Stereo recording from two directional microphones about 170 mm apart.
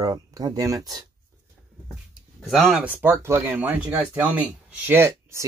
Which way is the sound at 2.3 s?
Centre (ahead or behind).